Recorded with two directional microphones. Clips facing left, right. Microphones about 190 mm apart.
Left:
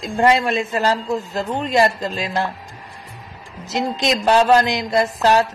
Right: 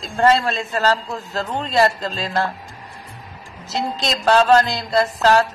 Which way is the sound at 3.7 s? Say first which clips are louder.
Left 3 dB; 15° left (ahead or behind).